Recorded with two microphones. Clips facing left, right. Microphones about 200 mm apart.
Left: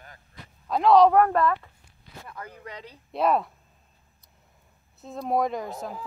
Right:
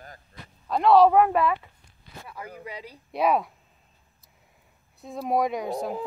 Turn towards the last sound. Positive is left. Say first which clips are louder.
# right 5 dB
turn(degrees=-20)  # may be behind; listen again after turning